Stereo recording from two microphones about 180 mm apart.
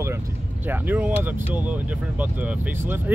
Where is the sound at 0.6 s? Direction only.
10° right (ahead or behind).